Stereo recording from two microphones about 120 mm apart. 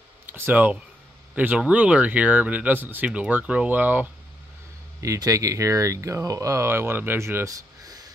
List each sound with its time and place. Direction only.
0.3 s speech: 15° right (ahead or behind)
5.0 s speech: 25° right (ahead or behind)